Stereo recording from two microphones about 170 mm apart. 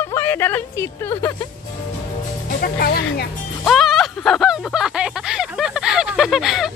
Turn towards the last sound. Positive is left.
turn(degrees=0)  # may be behind; listen again after turning